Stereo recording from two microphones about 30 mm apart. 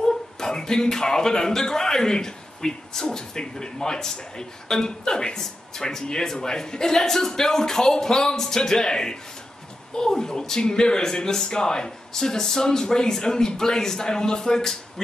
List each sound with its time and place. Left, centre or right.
0.0 s a man's voice: centre